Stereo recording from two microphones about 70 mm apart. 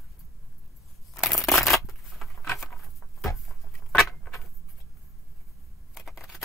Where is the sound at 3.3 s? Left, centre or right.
Left.